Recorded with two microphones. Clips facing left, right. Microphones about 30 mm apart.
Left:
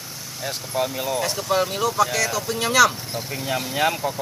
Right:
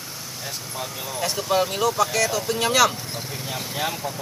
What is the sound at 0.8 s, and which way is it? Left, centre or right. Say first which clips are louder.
Speech: left 10 dB; left.